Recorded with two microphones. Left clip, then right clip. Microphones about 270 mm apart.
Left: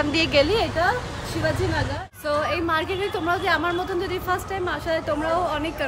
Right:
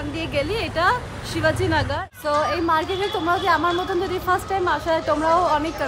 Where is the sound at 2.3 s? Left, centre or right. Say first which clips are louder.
Right 3 dB; centre.